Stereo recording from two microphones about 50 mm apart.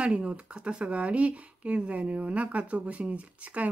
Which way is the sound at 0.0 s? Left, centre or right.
Right.